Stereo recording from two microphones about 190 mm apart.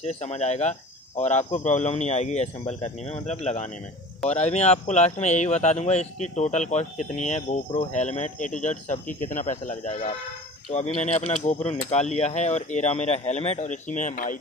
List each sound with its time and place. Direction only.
0.0 s speech: 35° left (ahead or behind)